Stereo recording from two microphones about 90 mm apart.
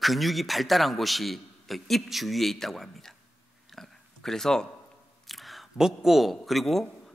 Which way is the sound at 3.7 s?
5° left (ahead or behind).